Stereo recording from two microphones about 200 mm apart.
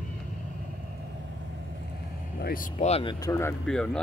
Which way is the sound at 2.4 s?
45° left (ahead or behind).